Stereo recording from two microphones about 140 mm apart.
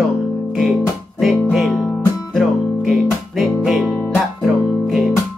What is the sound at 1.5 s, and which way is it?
Music, centre (ahead or behind).